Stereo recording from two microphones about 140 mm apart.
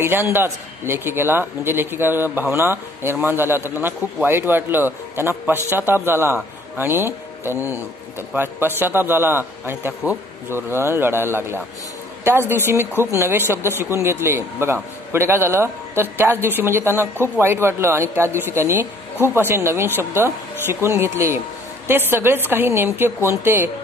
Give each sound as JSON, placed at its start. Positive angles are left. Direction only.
{"t": 0.0, "sound": "a man's voice", "side_deg": -15}